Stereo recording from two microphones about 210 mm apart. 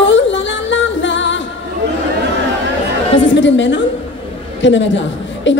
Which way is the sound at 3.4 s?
60° left (ahead or behind).